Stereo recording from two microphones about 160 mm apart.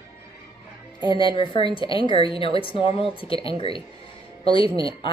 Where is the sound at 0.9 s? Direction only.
30° left (ahead or behind).